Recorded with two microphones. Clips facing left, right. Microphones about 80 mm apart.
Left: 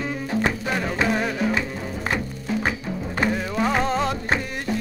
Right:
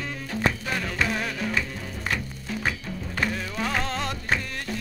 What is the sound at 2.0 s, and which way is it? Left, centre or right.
Music, left.